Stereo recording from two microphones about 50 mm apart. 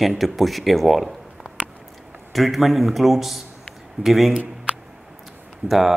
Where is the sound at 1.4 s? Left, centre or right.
Centre.